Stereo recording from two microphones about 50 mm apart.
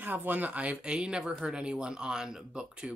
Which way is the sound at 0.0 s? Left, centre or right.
Right.